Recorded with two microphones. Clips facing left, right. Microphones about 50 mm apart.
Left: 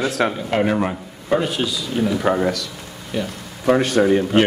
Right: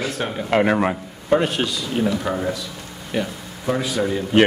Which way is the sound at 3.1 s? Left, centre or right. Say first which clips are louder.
Right 1 dB; right.